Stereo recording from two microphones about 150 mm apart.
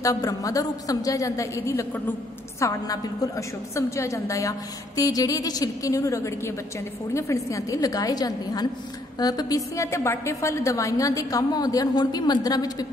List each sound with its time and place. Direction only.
0.0 s a woman's voice: 20° left (ahead or behind)